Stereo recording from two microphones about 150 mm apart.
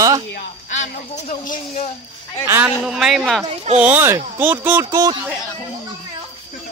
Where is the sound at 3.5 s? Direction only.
45° right (ahead or behind).